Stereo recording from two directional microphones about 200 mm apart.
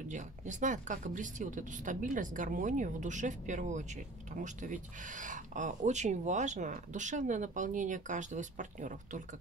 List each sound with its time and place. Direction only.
0.1 s speech: 40° right (ahead or behind)